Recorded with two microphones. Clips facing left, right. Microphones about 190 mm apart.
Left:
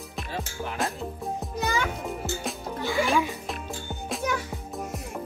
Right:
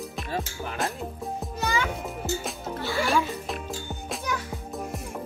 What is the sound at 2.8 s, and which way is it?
Music, 15° left (ahead or behind).